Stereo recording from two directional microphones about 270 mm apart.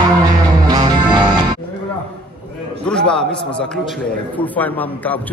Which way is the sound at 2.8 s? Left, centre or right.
Centre.